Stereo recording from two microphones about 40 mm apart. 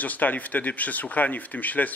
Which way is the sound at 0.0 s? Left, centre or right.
Left.